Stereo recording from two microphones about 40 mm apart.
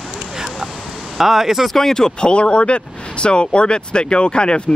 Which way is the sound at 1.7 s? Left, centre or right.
Centre.